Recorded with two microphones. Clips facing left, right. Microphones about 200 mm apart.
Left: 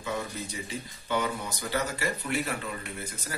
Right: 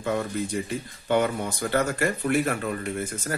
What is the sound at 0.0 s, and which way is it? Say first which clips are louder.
Speech: right 7 dB; 55° right (ahead or behind).